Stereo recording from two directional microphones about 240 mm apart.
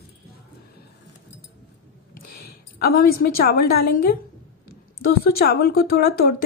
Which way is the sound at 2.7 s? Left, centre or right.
Left.